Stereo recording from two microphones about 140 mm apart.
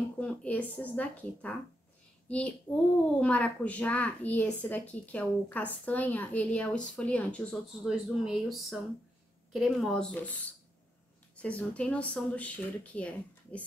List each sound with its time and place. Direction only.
0.2 s a woman's voice: 10° left (ahead or behind)
7.9 s speech: 5° right (ahead or behind)
11.3 s a woman's voice: 10° left (ahead or behind)